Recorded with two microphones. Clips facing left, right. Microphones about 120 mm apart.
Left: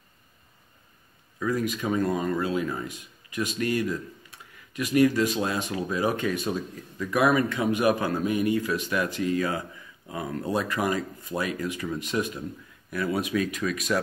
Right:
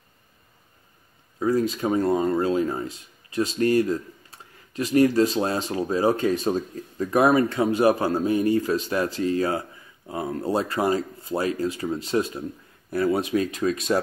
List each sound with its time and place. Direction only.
1.4 s speech: 30° right (ahead or behind)